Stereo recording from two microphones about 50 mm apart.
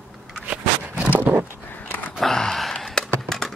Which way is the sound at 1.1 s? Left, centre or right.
Right.